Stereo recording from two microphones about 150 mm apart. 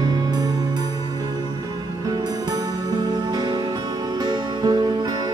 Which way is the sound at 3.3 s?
25° right (ahead or behind).